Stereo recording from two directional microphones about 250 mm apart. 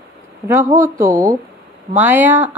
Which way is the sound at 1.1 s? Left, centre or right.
Centre.